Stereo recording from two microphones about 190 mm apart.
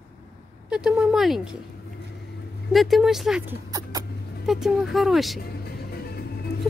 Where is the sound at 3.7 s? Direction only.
20° right (ahead or behind).